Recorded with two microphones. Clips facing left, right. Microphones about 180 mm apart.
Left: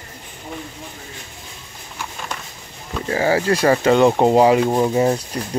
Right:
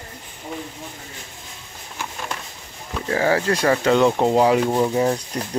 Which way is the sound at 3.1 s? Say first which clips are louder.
Left 2 dB; 10° left (ahead or behind).